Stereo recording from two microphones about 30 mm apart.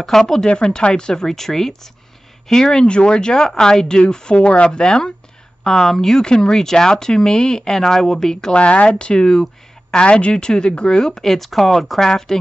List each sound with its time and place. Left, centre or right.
0.0 s speech: centre
0.5 s a woman's voice: left
1.2 s a woman's voice: centre
2.8 s a woman's voice: left
5.7 s speech: centre
6.2 s speech: left
8.5 s a woman's voice: left; by 11.3 s centre
11.3 s speech: centre
12.0 s speech: centre